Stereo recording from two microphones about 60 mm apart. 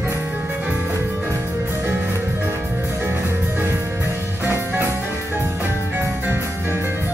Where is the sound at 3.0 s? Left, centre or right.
Right.